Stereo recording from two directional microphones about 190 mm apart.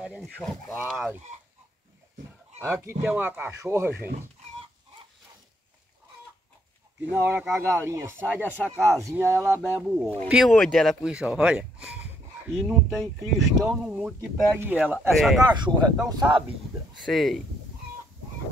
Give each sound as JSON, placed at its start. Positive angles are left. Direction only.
{"t": 0.0, "sound": "speech", "side_deg": 0}
{"t": 2.6, "sound": "speech", "side_deg": -15}
{"t": 7.1, "sound": "speech", "side_deg": -10}
{"t": 15.4, "sound": "speech", "side_deg": -25}
{"t": 17.0, "sound": "speech", "side_deg": 0}